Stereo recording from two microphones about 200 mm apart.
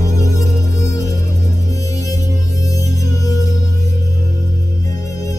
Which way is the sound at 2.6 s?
15° left (ahead or behind).